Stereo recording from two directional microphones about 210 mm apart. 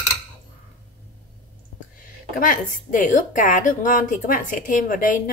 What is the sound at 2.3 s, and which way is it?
A woman's voice, 40° left (ahead or behind).